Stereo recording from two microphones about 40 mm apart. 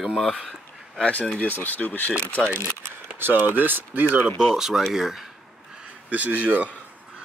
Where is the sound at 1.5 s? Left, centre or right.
Left.